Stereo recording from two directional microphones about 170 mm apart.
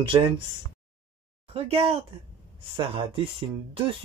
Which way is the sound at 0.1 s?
25° right (ahead or behind).